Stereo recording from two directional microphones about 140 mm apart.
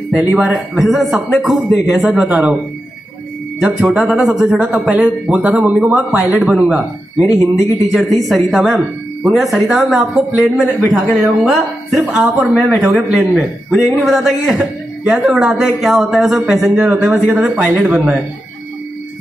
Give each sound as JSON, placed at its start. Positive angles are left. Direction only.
{"t": 0.3, "sound": "speech", "side_deg": -5}
{"t": 3.8, "sound": "speech", "side_deg": -5}
{"t": 7.2, "sound": "speech", "side_deg": 25}
{"t": 7.9, "sound": "speech", "side_deg": 0}